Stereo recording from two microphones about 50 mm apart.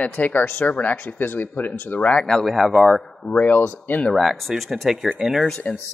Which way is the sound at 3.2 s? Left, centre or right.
Left.